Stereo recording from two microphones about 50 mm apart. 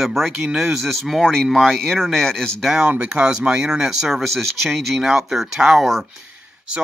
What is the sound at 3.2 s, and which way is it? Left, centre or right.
Speech, centre.